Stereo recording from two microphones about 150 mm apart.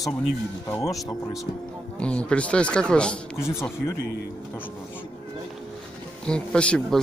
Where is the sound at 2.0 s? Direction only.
5° left (ahead or behind).